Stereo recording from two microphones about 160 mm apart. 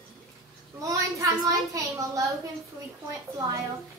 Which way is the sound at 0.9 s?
20° right (ahead or behind).